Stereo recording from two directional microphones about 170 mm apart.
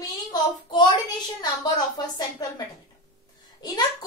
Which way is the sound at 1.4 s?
25° left (ahead or behind).